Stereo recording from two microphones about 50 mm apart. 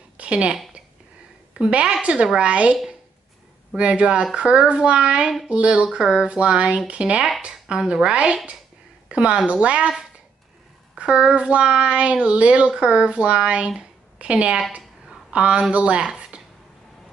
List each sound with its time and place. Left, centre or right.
0.2 s a woman's voice: right
11.0 s speech: centre
13.7 s a sound: right
15.3 s a woman's voice: right